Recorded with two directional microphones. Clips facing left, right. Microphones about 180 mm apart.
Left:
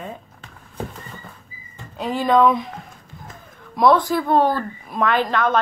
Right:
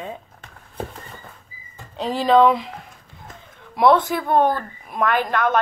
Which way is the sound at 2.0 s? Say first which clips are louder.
Right 1 dB; 30° right (ahead or behind).